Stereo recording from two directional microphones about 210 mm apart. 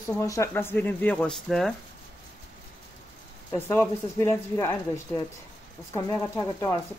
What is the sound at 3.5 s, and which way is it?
Speech, 10° left (ahead or behind).